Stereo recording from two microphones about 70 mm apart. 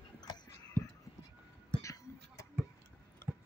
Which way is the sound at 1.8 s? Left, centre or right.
Left.